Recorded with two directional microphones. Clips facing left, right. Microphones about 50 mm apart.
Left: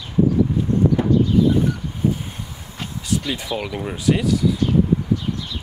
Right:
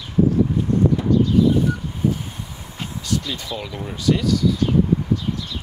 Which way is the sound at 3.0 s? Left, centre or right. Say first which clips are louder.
Left 2 dB; centre.